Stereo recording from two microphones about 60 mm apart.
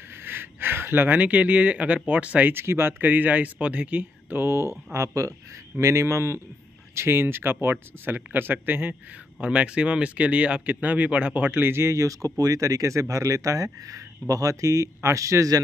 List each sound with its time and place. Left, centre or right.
0.2 s speech: right
2.5 s speech: right
7.0 s speech: right
9.4 s speech: right
11.7 s speech: right